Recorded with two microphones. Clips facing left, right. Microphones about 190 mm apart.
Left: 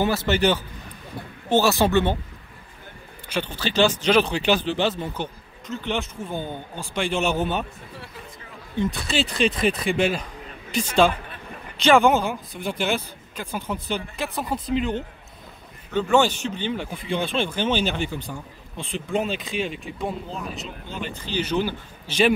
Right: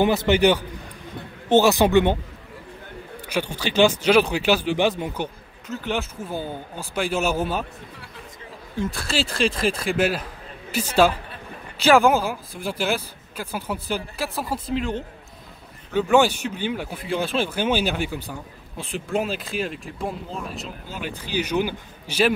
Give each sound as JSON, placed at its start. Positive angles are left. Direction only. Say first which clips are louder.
{"t": 0.0, "sound": "speech", "louder": "right 3 dB", "side_deg": -20}
{"t": 3.3, "sound": "speech", "louder": "right 1 dB", "side_deg": -10}
{"t": 8.7, "sound": "speech", "louder": "left 1 dB", "side_deg": 0}